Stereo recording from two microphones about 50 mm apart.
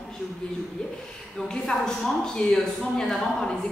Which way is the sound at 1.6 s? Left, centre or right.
Centre.